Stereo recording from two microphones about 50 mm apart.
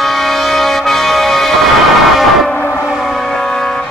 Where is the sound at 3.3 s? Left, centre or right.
Centre.